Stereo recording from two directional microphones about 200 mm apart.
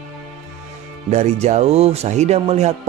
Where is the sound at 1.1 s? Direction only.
35° right (ahead or behind).